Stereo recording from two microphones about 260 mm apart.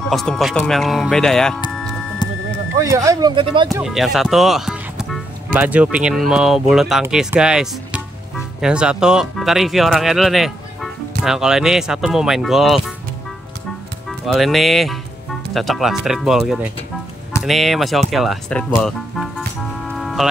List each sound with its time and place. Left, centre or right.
0.1 s speech: centre
1.7 s music: centre
2.2 s a sound: centre
2.8 s speech: centre
3.6 s speech: centre
14.0 s speech: centre
20.0 s music: centre